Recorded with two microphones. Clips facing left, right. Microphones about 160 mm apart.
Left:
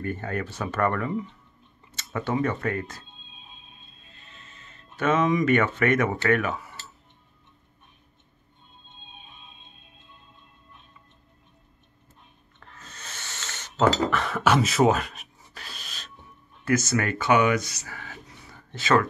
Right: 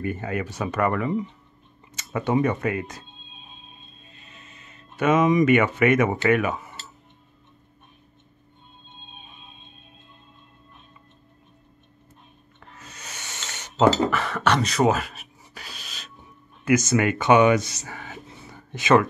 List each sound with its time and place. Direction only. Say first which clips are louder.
0.0 s speech: right 2 dB; 10° right (ahead or behind)
4.3 s speech: right 1 dB; 15° right (ahead or behind)
12.5 s a sound: right 2 dB; 10° right (ahead or behind)
14.1 s rub: even; centre (ahead or behind)
16.6 s speech: right 4 dB; 15° right (ahead or behind)
18.7 s speech: right 4 dB; 15° right (ahead or behind)